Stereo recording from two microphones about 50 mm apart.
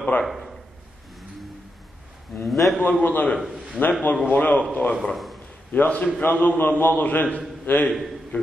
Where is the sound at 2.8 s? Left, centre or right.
Left.